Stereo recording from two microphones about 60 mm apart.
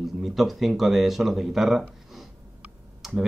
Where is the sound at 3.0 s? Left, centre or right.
Centre.